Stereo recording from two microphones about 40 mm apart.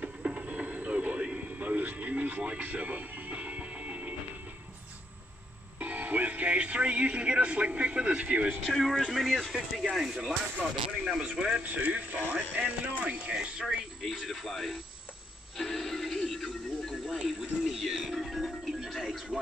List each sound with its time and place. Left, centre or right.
0.0 s music: right
1.6 s a sound: right
2.6 s music: right
5.8 s speech: right
8.6 s a man's voice: centre
11.3 s speech: right
11.6 s speech: right
13.3 s speech: right
14.0 s a man's voice: centre
15.5 s synthetic singing: centre
16.9 s music: centre
18.9 s television: centre